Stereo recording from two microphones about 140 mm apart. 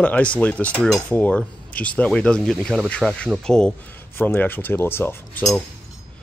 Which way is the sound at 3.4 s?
5° left (ahead or behind).